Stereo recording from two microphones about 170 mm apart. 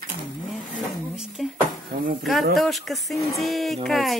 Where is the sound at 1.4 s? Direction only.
Centre (ahead or behind).